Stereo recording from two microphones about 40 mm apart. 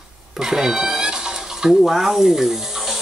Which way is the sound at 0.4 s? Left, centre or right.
Centre.